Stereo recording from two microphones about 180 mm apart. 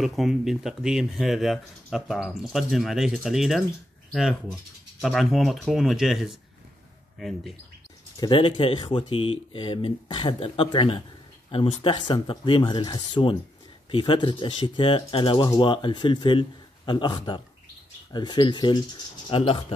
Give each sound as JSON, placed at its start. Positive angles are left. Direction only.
{"t": 0.0, "sound": "speech", "side_deg": 0}
{"t": 8.2, "sound": "speech", "side_deg": 25}